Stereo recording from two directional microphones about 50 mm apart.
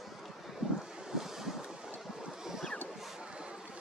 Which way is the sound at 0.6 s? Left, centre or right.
Centre.